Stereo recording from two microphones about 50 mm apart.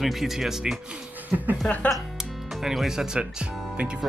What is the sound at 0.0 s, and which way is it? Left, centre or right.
Speech, centre.